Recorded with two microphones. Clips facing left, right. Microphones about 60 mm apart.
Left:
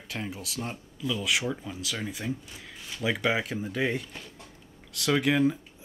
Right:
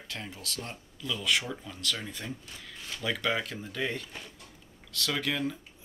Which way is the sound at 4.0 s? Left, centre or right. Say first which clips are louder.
Left 1 dB; centre.